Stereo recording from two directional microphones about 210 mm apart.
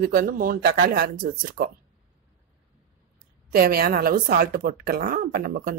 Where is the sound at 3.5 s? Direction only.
45° right (ahead or behind).